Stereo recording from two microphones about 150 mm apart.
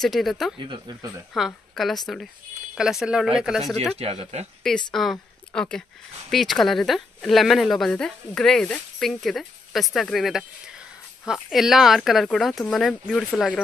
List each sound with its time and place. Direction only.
0.0 s speech: centre (ahead or behind)
0.6 s speech: 30° right (ahead or behind)
1.3 s speech: centre (ahead or behind)
4.0 s speech: 40° right (ahead or behind)
4.6 s a woman's voice: 5° left (ahead or behind)